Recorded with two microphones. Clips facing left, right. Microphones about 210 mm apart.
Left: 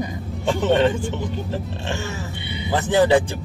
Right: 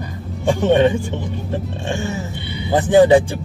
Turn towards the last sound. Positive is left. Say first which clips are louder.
# right 6 dB
turn(degrees=-15)  # may be behind; listen again after turning